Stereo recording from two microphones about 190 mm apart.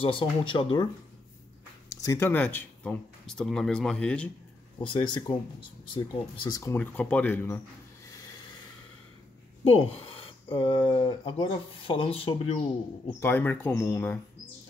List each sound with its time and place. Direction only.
0.0 s speech: 25° left (ahead or behind)
2.0 s speech: 15° left (ahead or behind)
4.8 s speech: 25° left (ahead or behind)
9.7 s speech: 30° left (ahead or behind)
13.2 s speech: 10° left (ahead or behind)